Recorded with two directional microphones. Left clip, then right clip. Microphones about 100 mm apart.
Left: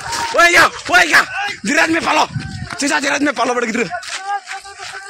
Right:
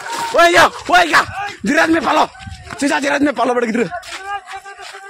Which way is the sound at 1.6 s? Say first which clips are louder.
Right 1 dB; 85° right.